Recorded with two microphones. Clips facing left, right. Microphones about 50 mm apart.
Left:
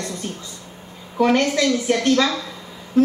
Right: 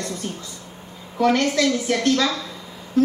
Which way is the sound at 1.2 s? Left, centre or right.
Centre.